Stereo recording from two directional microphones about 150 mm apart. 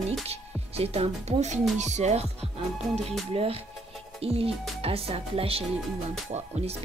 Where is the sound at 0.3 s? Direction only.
45° right (ahead or behind).